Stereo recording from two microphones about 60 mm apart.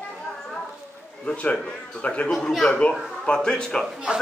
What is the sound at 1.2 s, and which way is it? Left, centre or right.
Speech, left.